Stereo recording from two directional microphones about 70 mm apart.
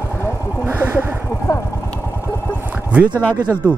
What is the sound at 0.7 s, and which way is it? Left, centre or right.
Speech, right.